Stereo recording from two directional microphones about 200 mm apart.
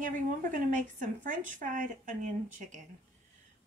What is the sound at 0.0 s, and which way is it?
Speech, 40° right (ahead or behind).